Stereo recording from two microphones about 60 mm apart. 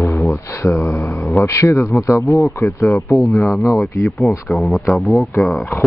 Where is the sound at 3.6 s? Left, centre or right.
Left.